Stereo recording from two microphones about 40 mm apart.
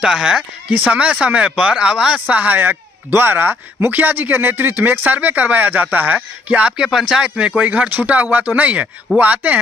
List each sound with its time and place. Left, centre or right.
0.0 s speech: centre
0.7 s speech: right
0.9 s speech: right
2.1 s speech: right
3.1 s speech: right
6.6 s speech: centre
7.2 s speech: right